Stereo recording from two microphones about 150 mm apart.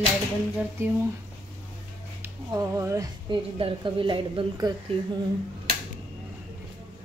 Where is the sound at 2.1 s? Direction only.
20° right (ahead or behind).